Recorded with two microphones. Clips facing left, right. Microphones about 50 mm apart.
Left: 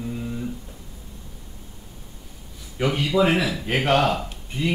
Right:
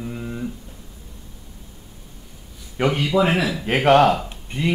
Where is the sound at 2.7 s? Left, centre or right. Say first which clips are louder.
Right 2 dB; right.